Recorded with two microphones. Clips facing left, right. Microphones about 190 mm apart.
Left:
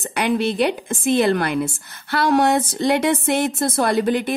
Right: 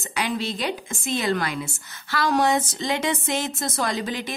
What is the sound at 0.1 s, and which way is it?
A woman's voice, 55° left (ahead or behind).